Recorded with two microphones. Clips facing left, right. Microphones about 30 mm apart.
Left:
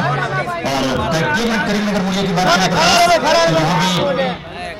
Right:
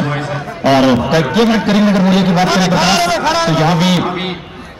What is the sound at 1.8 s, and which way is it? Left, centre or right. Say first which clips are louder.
Speech: right 6 dB; centre.